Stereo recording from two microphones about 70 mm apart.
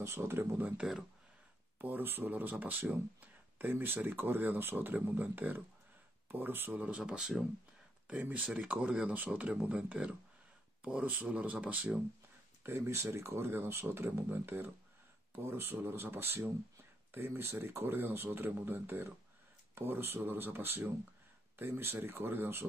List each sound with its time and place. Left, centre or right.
0.0 s speech: right
0.7 s speech: centre
1.8 s speech: right; by 7.4 s centre
8.1 s speech: centre
12.6 s speech: right